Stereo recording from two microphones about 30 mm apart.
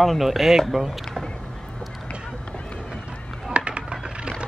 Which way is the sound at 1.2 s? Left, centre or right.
Left.